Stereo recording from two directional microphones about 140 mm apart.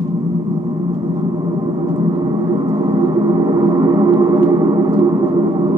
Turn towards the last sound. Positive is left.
turn(degrees=-25)  # may be behind; listen again after turning